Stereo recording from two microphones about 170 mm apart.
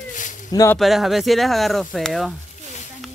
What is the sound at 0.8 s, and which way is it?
Speech, centre (ahead or behind).